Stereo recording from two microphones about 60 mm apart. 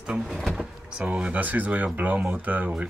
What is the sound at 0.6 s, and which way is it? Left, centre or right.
Speech, right.